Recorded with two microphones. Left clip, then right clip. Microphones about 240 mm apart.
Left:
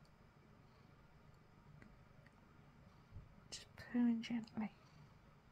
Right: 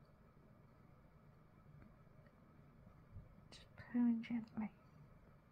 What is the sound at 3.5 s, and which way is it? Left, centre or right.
Speech, centre.